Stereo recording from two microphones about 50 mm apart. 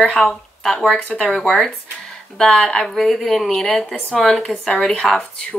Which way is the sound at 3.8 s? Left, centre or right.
Centre.